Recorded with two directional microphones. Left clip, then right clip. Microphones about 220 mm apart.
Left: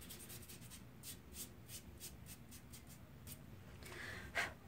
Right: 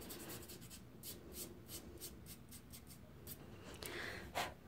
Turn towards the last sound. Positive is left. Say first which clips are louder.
# right 4 dB
turn(degrees=-45)  # may be behind; listen again after turning